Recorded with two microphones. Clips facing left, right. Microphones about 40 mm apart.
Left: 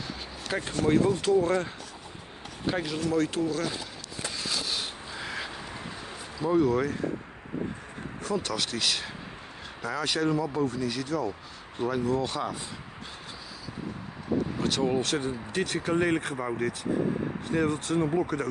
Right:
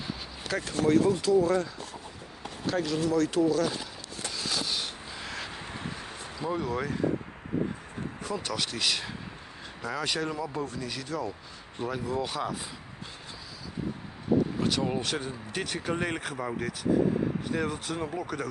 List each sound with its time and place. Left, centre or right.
0.5 s speech: left
2.6 s speech: centre
3.3 s speech: centre
4.3 s rub: centre
6.4 s speech: centre
8.2 s speech: centre
14.6 s speech: centre
18.1 s speech: centre